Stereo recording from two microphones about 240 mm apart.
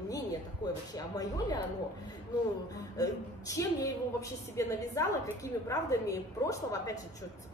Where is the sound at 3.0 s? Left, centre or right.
Centre.